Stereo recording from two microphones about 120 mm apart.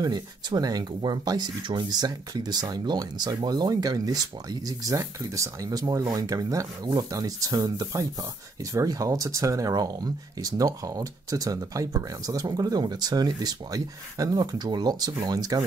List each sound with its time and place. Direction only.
0.0 s speech: 35° right (ahead or behind)